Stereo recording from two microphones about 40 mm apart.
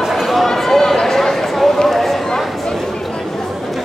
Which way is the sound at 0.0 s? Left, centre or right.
Centre.